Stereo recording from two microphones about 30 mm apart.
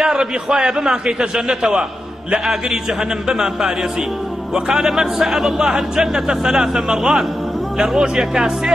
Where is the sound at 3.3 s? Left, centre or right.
Right.